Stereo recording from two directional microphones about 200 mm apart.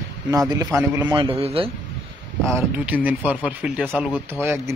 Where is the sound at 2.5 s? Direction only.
5° right (ahead or behind).